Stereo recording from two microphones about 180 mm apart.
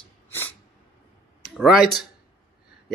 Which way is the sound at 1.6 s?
5° right (ahead or behind).